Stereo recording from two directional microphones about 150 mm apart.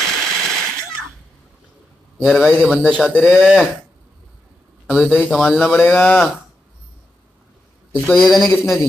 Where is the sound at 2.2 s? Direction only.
Centre (ahead or behind).